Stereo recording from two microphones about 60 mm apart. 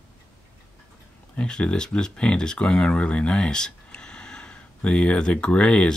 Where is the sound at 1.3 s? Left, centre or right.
Centre.